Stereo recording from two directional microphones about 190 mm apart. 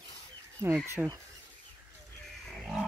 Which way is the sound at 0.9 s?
10° right (ahead or behind).